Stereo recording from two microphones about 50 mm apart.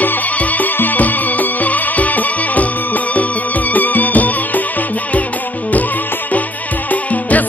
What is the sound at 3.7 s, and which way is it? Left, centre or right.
Music, left.